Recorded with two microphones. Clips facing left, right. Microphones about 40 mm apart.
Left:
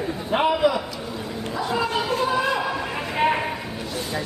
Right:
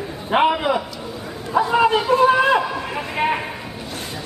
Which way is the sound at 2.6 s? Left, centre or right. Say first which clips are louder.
Right 1 dB; centre.